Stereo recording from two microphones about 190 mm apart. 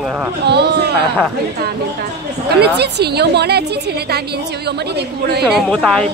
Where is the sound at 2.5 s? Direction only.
60° right (ahead or behind).